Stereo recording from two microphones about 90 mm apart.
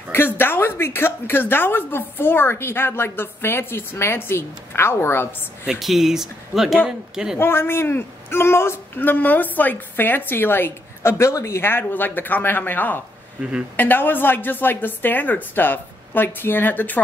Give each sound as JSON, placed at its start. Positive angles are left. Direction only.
{"t": 0.1, "sound": "a man's voice", "side_deg": 25}
{"t": 5.7, "sound": "a man's voice", "side_deg": 0}
{"t": 7.3, "sound": "a man's voice", "side_deg": 25}
{"t": 13.4, "sound": "a man's voice", "side_deg": -10}
{"t": 13.7, "sound": "a man's voice", "side_deg": 20}